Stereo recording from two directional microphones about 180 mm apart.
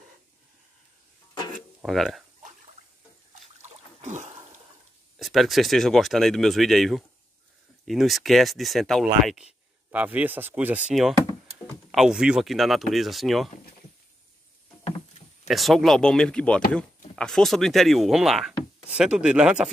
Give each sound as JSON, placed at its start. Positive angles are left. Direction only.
{"t": 1.8, "sound": "speech", "side_deg": 0}
{"t": 3.6, "sound": "a sound", "side_deg": -40}
{"t": 5.2, "sound": "speech", "side_deg": 0}
{"t": 9.8, "sound": "speech", "side_deg": -10}
{"t": 15.4, "sound": "speech", "side_deg": 0}